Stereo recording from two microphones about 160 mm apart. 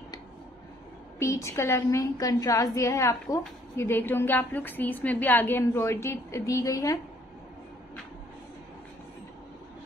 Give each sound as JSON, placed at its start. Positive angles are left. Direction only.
{"t": 1.2, "sound": "a woman's voice", "side_deg": 20}